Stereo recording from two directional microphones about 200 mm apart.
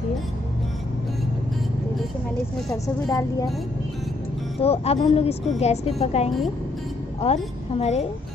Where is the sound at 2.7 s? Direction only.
15° left (ahead or behind).